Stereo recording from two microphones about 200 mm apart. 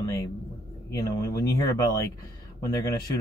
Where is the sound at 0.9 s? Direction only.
15° left (ahead or behind).